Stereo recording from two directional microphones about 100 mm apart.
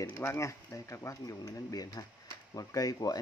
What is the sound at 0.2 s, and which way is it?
Speech, 25° left (ahead or behind).